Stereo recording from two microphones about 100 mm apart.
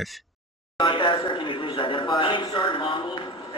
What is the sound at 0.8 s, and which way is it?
A man's voice, 55° left (ahead or behind).